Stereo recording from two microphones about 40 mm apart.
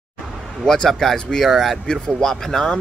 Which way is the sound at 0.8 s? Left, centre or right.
Centre.